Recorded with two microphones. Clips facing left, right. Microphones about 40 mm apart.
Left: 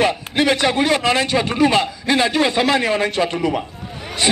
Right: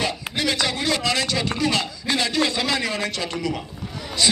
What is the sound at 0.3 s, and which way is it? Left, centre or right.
A man's voice, left.